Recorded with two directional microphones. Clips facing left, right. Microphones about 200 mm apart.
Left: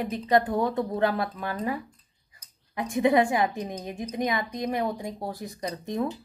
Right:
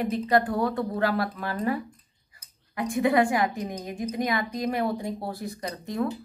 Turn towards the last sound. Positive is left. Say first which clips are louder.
# even
turn(degrees=20)  # may be behind; listen again after turning